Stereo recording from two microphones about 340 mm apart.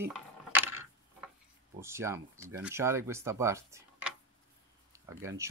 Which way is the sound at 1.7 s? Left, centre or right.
Centre.